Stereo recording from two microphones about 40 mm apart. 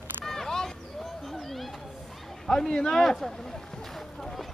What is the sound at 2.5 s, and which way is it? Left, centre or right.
Speech, centre.